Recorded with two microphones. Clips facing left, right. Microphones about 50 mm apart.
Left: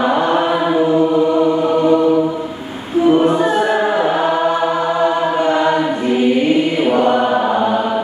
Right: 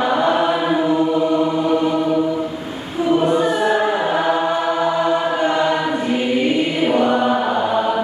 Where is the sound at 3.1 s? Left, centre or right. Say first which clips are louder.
Left 3 dB; left.